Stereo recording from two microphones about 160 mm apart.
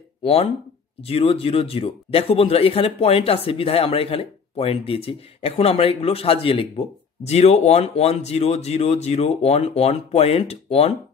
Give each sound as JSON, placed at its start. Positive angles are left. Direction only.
{"t": 0.2, "sound": "speech", "side_deg": 40}